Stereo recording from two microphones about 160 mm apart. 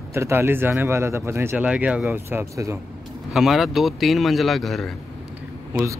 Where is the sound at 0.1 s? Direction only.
15° right (ahead or behind).